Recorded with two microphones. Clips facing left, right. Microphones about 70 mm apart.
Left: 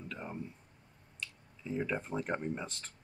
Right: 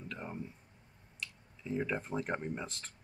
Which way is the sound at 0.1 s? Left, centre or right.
Centre.